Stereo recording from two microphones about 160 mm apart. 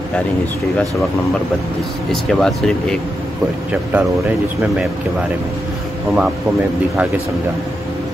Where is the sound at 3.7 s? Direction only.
10° right (ahead or behind).